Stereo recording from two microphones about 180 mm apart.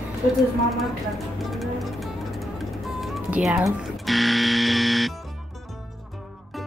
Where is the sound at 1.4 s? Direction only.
Centre (ahead or behind).